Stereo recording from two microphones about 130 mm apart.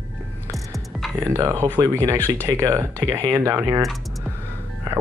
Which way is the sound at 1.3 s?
25° right (ahead or behind).